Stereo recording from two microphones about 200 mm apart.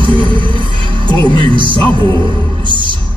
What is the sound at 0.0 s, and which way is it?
Music, 25° right (ahead or behind).